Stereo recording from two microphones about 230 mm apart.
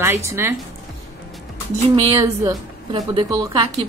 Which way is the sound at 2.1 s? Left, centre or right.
Centre.